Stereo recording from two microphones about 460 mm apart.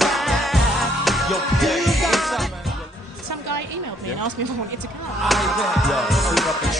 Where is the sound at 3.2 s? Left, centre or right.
Right.